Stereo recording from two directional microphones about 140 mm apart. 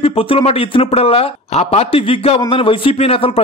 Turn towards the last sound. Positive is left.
turn(degrees=45)  # may be behind; listen again after turning